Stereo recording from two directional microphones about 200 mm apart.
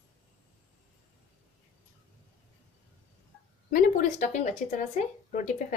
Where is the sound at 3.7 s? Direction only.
45° left (ahead or behind).